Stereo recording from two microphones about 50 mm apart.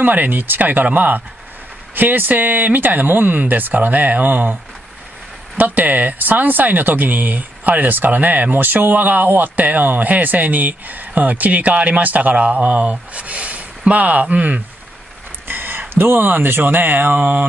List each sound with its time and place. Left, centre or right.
0.0 s speech: right
5.6 s speech: right
15.4 s a sound: right
15.9 s speech: right